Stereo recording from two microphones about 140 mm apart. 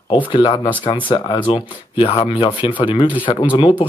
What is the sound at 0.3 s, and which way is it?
Speech, 35° left (ahead or behind).